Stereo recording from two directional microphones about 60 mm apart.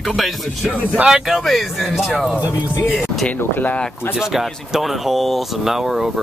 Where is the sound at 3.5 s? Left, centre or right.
Left.